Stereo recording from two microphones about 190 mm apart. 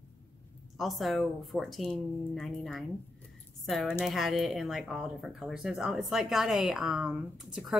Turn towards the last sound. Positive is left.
turn(degrees=0)  # may be behind; listen again after turning